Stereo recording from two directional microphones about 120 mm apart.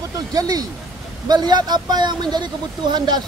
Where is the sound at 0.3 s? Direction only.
30° right (ahead or behind).